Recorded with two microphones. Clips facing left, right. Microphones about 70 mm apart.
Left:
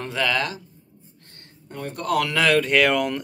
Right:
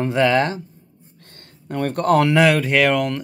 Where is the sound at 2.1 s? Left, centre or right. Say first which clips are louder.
Right 6 dB; right.